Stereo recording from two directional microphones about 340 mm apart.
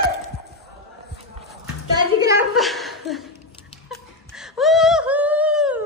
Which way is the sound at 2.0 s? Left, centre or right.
Centre.